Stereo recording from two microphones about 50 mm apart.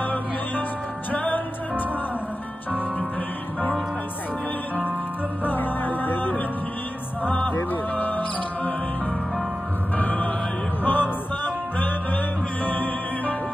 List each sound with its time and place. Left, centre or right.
0.0 s music: left
5.4 s music: left
7.2 s music: left
9.9 s music: left